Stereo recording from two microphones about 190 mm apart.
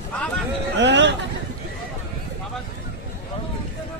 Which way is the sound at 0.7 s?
65° right (ahead or behind).